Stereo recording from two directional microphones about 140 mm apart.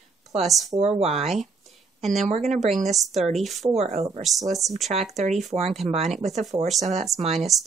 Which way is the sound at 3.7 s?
50° right (ahead or behind).